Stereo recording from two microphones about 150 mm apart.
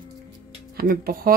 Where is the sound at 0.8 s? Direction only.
75° right (ahead or behind).